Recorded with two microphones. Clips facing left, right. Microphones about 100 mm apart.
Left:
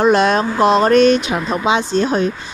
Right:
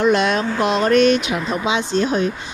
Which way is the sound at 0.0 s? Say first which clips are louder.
Left 3 dB; 40° left (ahead or behind).